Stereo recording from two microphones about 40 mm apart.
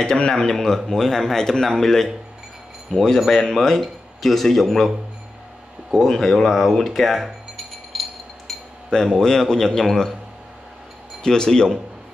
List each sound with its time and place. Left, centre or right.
0.0 s speech: centre
6.0 s speech: centre
7.5 s a sound: centre
8.9 s speech: centre
11.2 s speech: centre